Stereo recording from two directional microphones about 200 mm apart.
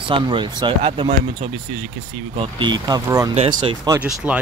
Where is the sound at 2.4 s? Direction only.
25° right (ahead or behind).